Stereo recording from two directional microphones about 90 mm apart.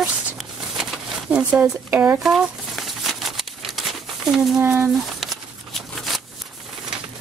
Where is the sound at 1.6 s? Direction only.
20° right (ahead or behind).